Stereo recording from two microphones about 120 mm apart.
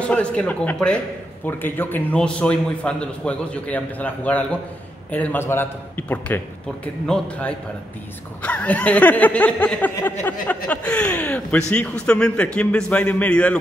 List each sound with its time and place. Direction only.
0.0 s a man's voice: 10° left (ahead or behind)